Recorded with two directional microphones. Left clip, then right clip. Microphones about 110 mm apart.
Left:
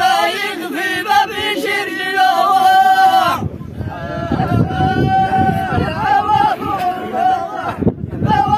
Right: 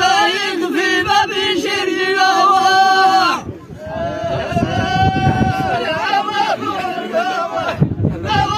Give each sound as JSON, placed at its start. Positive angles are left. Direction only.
{"t": 0.0, "sound": "music", "side_deg": 30}
{"t": 0.7, "sound": "choir", "side_deg": 35}